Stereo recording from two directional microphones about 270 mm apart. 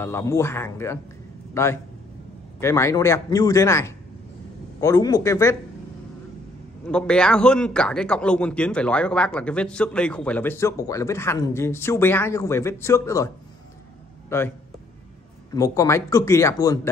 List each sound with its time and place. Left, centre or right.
0.0 s a man's voice: centre
6.9 s a man's voice: centre
14.3 s speech: centre
15.5 s speech: centre